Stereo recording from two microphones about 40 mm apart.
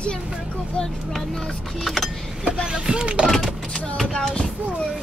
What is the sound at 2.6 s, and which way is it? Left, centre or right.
Speech, centre.